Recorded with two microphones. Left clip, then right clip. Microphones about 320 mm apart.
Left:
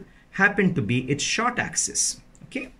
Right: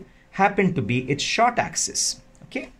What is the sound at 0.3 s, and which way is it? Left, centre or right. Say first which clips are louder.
Speech: right 1 dB; centre.